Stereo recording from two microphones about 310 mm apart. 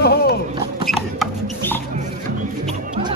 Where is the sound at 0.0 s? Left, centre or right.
Left.